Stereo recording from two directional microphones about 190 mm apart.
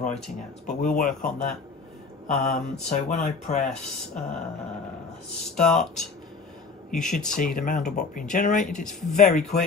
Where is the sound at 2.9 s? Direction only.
40° left (ahead or behind).